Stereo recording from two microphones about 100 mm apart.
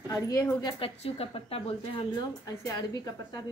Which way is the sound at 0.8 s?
70° left (ahead or behind).